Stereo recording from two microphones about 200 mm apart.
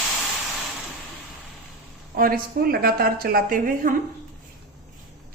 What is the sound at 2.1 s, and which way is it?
A woman's voice, 45° right (ahead or behind).